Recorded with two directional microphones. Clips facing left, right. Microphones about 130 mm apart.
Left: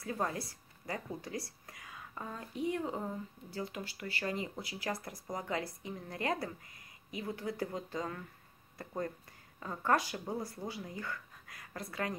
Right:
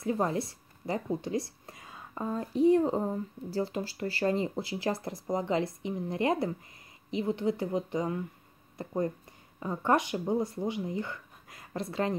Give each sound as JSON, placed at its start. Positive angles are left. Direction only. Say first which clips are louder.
{"t": 0.0, "sound": "a woman's voice", "louder": "right 7 dB", "side_deg": -25}